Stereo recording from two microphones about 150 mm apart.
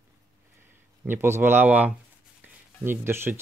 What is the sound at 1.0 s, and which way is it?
Speech, 15° right (ahead or behind).